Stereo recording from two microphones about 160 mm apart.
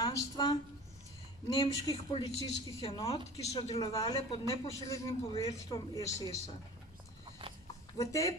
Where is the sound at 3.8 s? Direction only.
25° left (ahead or behind).